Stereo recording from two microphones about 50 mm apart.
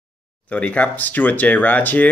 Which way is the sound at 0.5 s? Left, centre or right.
Left.